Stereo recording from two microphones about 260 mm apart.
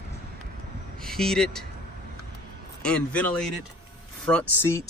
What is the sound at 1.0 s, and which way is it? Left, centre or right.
Speech, centre.